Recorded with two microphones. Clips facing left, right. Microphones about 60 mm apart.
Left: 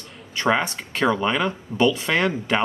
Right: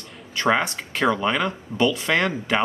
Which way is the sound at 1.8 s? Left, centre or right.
Left.